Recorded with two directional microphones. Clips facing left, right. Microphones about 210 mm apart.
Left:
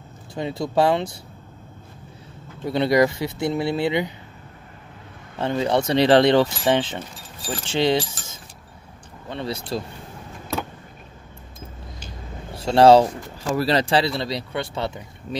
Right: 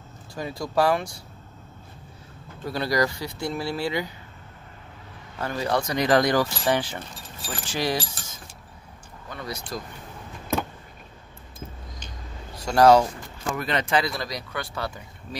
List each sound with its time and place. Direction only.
0.3 s speech: 25° left (ahead or behind)
2.6 s speech: 25° left (ahead or behind)
5.4 s speech: 20° left (ahead or behind)
9.3 s speech: 30° left (ahead or behind)
12.5 s speech: 30° left (ahead or behind)